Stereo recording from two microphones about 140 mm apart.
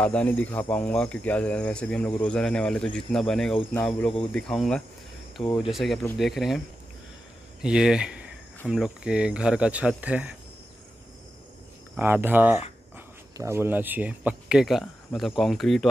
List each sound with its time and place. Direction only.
0.0 s speech: 10° left (ahead or behind)
5.4 s speech: 40° left (ahead or behind)
5.7 s speech: centre (ahead or behind)
7.6 s speech: 5° right (ahead or behind)
12.0 s speech: 15° right (ahead or behind); by 15.9 s centre (ahead or behind)